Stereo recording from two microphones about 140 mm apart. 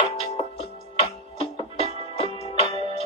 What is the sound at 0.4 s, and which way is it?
Music, 45° left (ahead or behind).